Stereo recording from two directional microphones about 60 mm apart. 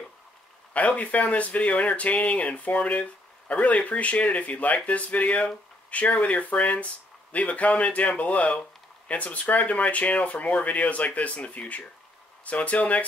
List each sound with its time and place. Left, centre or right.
0.7 s speech: left